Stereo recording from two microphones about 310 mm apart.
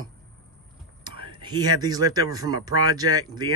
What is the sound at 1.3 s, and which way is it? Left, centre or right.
Speech, centre.